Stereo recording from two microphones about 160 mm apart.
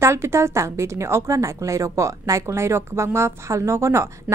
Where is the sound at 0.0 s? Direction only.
15° right (ahead or behind).